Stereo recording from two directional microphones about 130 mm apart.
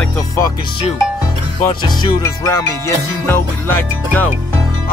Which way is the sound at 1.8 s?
35° left (ahead or behind).